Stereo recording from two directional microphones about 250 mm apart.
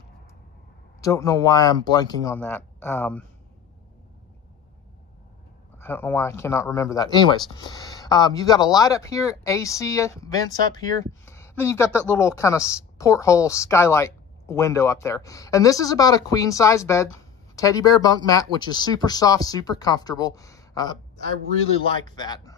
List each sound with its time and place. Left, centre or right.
1.0 s speech: centre
5.8 s speech: centre
22.1 s speech: centre